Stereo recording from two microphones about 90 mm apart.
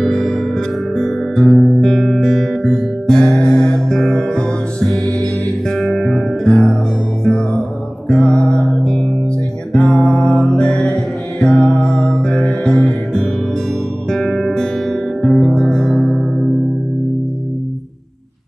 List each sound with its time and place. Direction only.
0.0 s music: 5° left (ahead or behind)